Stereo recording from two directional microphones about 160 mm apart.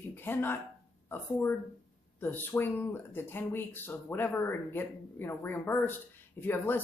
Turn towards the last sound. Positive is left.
turn(degrees=15)  # may be behind; listen again after turning